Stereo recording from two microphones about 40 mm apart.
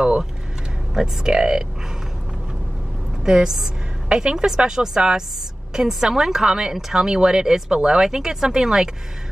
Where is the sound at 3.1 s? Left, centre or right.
Centre.